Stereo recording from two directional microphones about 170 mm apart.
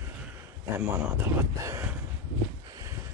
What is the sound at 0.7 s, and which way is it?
Speech, 15° right (ahead or behind).